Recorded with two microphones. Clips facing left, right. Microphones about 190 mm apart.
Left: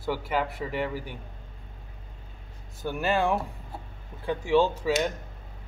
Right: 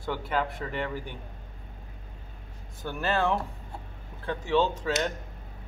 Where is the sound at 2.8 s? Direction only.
10° left (ahead or behind).